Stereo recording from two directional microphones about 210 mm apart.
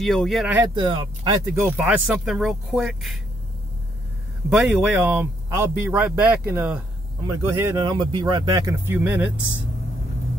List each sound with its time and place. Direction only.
0.0 s speech: centre (ahead or behind)
0.6 s speech: 20° right (ahead or behind)
1.4 s speech: 10° right (ahead or behind)
4.5 s speech: 5° right (ahead or behind)